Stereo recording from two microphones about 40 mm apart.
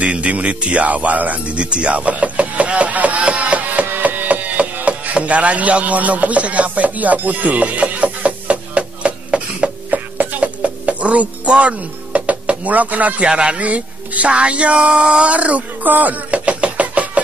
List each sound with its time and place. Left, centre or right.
0.0 s speech: right
3.8 s a sound: right
5.1 s chopping: right
9.8 s music: right
13.3 s speech: right
13.6 s speech: right
15.3 s knock: right